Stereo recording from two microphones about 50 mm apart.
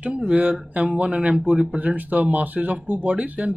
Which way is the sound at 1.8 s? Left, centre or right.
Right.